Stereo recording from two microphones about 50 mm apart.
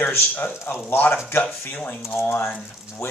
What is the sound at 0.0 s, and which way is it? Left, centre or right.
Speech, left.